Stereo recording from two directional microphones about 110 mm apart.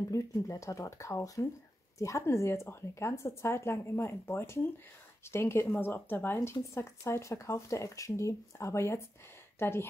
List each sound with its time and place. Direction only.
0.1 s a woman's voice: 30° left (ahead or behind)